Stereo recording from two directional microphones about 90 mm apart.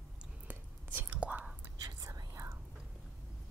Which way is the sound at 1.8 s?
40° right (ahead or behind).